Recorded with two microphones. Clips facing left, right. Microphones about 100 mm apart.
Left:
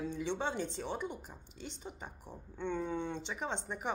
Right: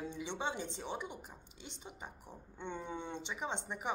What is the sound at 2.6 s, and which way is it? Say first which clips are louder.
Speech: left 6 dB; 20° right (ahead or behind).